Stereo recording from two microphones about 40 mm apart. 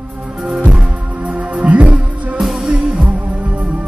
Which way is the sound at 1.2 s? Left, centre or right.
Right.